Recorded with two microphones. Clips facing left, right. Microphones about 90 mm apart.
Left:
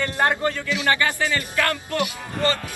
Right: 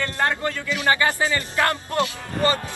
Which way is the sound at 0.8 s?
25° right (ahead or behind).